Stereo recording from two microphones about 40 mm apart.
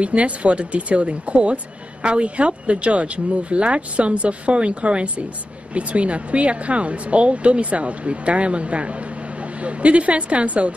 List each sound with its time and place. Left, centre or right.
0.0 s speech: right